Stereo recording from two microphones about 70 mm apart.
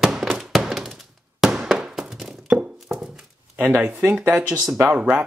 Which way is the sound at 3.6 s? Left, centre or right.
Centre.